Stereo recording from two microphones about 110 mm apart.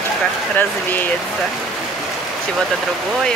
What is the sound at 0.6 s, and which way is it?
Speech, 15° left (ahead or behind).